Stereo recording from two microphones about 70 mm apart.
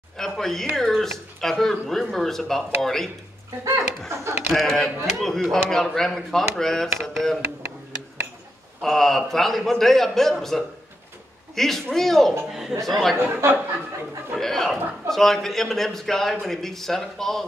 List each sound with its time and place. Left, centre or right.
0.2 s a man's voice: centre
4.1 s speech: right
4.6 s a man's voice: centre
8.8 s a man's voice: centre
14.3 s a man's voice: centre